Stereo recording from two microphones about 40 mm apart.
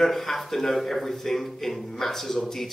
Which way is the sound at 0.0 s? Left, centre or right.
Centre.